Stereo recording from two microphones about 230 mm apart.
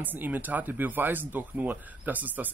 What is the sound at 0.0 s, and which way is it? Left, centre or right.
Speech, centre.